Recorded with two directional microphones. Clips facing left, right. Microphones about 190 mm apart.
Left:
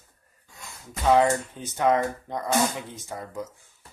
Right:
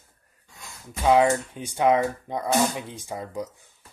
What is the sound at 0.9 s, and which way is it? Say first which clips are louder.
Speech: right 1 dB; 15° right (ahead or behind).